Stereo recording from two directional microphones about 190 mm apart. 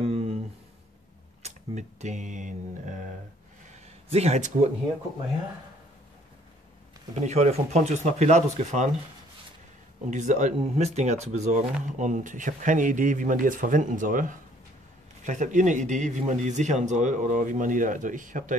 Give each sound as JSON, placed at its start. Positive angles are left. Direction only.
{"t": 0.0, "sound": "a sound", "side_deg": -35}
{"t": 1.4, "sound": "speech", "side_deg": -35}
{"t": 4.1, "sound": "speech", "side_deg": -35}
{"t": 7.2, "sound": "speech", "side_deg": -35}
{"t": 10.0, "sound": "speech", "side_deg": -40}